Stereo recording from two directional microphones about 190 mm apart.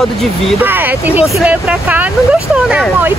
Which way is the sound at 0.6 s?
10° right (ahead or behind).